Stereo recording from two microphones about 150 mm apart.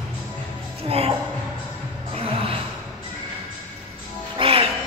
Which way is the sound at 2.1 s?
40° right (ahead or behind).